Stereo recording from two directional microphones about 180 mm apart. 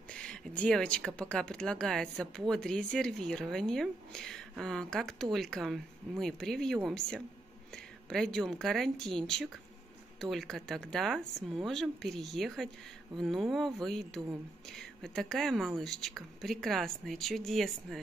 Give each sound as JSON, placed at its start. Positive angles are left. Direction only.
{"t": 0.1, "sound": "speech", "side_deg": 5}